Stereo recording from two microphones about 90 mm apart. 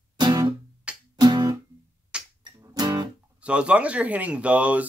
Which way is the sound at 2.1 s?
10° right (ahead or behind).